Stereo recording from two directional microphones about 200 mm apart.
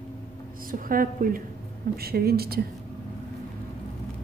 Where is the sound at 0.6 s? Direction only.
45° right (ahead or behind).